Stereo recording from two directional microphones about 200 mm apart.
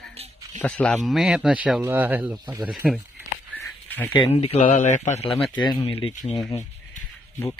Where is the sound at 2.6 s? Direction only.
5° right (ahead or behind).